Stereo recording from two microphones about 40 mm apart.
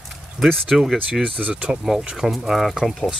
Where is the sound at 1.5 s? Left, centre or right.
Right.